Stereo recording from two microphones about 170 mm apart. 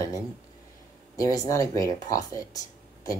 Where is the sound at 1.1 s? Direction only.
20° left (ahead or behind).